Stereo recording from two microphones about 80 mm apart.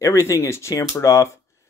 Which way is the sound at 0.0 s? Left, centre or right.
Left.